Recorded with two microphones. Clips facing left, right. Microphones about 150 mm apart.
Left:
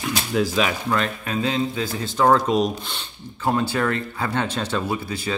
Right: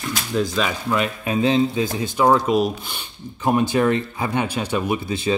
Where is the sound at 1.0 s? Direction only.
20° right (ahead or behind).